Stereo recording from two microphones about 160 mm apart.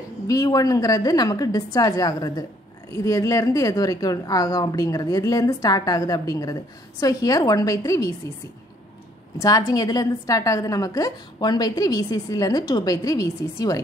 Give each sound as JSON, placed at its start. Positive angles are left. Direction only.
{"t": 0.3, "sound": "speech", "side_deg": 20}
{"t": 9.4, "sound": "speech", "side_deg": 20}